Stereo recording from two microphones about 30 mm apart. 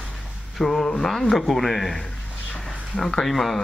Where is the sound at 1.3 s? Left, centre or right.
Centre.